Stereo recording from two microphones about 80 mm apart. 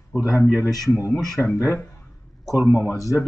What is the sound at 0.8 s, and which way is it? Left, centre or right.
Speech, left.